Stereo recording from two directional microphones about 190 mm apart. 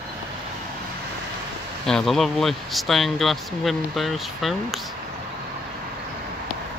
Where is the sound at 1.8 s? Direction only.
Centre (ahead or behind).